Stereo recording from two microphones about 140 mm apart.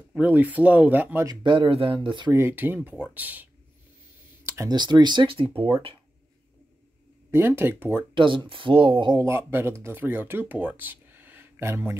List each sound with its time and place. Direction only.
0.1 s speech: 10° right (ahead or behind)
1.2 s speech: 30° right (ahead or behind)
2.3 s speech: 15° right (ahead or behind)
4.6 s speech: 30° right (ahead or behind)
7.2 s speech: 15° right (ahead or behind)
8.1 s speech: 35° right (ahead or behind)
9.2 s speech: 15° right (ahead or behind)